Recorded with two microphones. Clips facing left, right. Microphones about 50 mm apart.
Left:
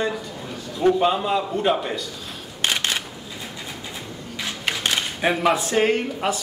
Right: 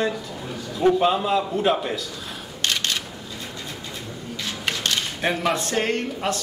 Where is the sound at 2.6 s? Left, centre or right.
Centre.